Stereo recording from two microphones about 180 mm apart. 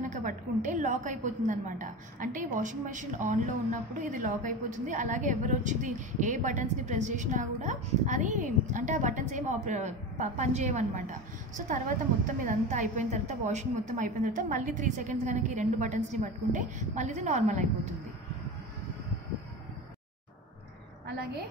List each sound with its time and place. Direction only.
0.7 s a woman's voice: 45° right (ahead or behind)